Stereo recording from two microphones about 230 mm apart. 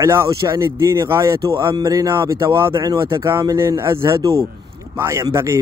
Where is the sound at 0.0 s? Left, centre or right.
Centre.